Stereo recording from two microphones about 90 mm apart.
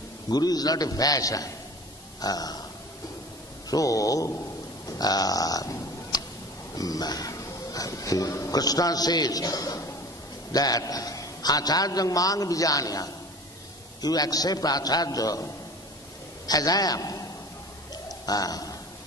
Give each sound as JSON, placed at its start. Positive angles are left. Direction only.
{"t": 0.3, "sound": "speech", "side_deg": 45}
{"t": 3.7, "sound": "a sound", "side_deg": 40}
{"t": 4.9, "sound": "speech", "side_deg": 45}
{"t": 18.0, "sound": "bird", "side_deg": 45}